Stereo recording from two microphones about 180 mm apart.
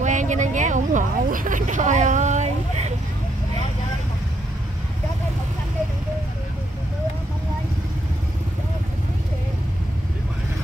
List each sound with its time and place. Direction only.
0.0 s speech: 45° right (ahead or behind)